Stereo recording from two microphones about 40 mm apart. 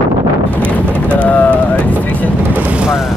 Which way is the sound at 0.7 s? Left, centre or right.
Left.